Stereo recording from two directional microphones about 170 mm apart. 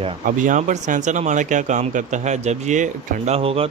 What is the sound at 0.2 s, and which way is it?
Speech, 50° right (ahead or behind).